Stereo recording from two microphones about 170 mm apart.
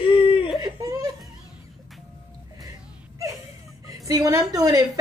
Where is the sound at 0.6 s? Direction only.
20° right (ahead or behind).